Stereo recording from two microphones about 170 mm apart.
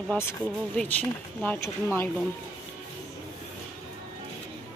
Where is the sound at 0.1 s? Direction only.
15° left (ahead or behind).